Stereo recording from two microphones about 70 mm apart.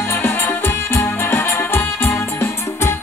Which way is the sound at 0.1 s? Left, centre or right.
Left.